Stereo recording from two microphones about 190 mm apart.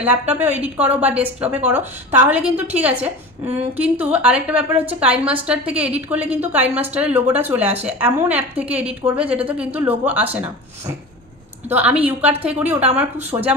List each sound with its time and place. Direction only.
0.0 s a woman's voice: 10° right (ahead or behind)
11.7 s a woman's voice: 10° right (ahead or behind)
13.3 s speech: 20° right (ahead or behind)